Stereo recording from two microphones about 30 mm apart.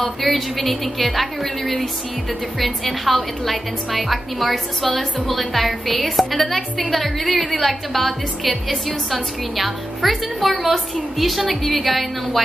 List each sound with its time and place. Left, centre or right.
0.2 s a woman's voice: centre